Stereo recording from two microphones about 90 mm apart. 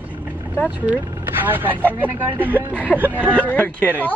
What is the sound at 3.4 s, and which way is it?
Speech, 15° left (ahead or behind).